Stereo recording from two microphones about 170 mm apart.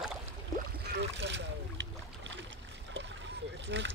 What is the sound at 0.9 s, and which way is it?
Boat, 90° right.